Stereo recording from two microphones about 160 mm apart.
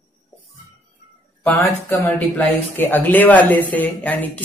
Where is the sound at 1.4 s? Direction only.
15° left (ahead or behind).